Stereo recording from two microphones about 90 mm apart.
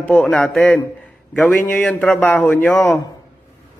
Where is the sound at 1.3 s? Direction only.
20° left (ahead or behind).